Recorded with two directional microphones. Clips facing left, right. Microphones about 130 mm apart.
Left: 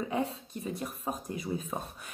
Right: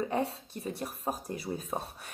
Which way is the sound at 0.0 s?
40° right (ahead or behind).